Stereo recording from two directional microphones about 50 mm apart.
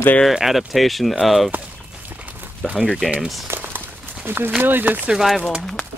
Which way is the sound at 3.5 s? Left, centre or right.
Right.